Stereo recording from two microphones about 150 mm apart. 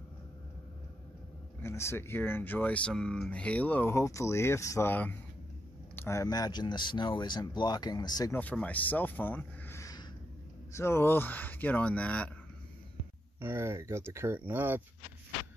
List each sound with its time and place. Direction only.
1.6 s speech: 15° left (ahead or behind)
8.4 s speech: 10° left (ahead or behind)
13.4 s speech: 15° right (ahead or behind)